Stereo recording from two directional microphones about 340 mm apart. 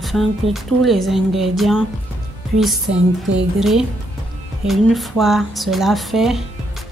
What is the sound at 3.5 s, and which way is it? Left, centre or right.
Music, centre.